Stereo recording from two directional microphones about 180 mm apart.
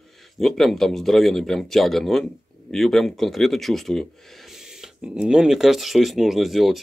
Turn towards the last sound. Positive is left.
turn(degrees=0)  # may be behind; listen again after turning